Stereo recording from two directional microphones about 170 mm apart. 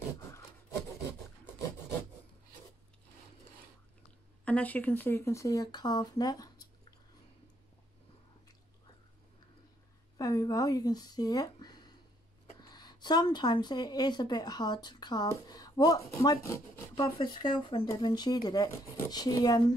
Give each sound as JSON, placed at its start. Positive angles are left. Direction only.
{"t": 0.2, "sound": "rub", "side_deg": 15}
{"t": 4.5, "sound": "speech", "side_deg": 10}
{"t": 10.1, "sound": "speech", "side_deg": 20}